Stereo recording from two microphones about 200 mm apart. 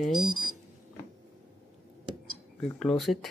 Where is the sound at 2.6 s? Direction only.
5° left (ahead or behind).